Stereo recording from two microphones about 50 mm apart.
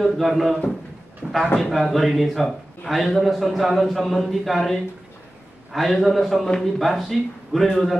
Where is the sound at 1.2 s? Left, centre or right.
Right.